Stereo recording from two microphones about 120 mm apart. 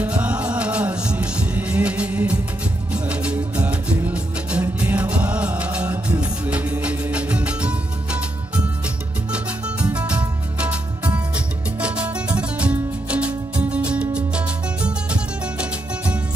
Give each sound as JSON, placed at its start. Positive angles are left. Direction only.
{"t": 0.0, "sound": "music", "side_deg": -10}
{"t": 9.3, "sound": "music", "side_deg": -10}